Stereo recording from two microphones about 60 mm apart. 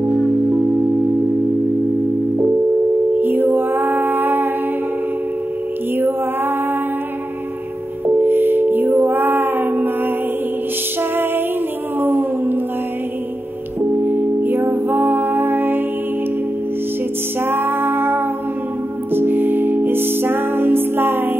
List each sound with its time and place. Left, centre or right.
3.2 s a sound: right
8.2 s music: right
11.0 s music: right
14.0 s music: right
17.5 s music: right